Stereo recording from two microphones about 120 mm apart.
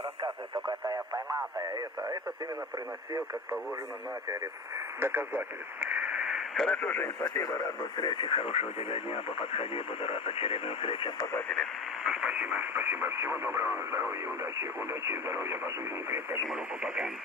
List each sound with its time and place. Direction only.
0.7 s speech: 25° right (ahead or behind)
5.0 s speech: 20° right (ahead or behind)
6.2 s radio: centre (ahead or behind)
6.8 s speech: 15° left (ahead or behind)
7.2 s speech: 30° left (ahead or behind); by 11.1 s 50° left (ahead or behind)
12.0 s speech: 10° right (ahead or behind)
16.4 s speech: 10° right (ahead or behind)